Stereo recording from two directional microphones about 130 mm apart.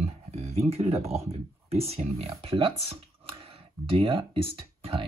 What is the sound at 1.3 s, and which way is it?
Speech, 50° right (ahead or behind).